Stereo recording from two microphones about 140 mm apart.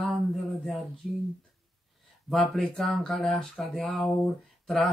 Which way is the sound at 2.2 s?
Centre (ahead or behind).